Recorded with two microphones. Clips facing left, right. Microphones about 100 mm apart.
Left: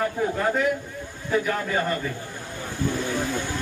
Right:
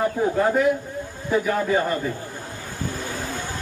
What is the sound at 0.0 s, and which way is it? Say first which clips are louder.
A man's voice: right 3 dB; 20° right (ahead or behind).